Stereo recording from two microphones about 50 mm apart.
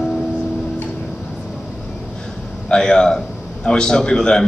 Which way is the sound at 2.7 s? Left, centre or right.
Centre.